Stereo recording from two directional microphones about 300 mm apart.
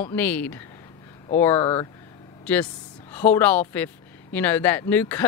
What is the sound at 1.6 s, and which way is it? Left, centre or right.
Speech, centre.